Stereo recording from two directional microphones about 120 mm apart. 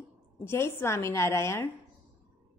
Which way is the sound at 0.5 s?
20° left (ahead or behind).